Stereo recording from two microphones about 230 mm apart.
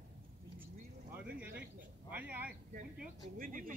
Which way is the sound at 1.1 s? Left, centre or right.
Centre.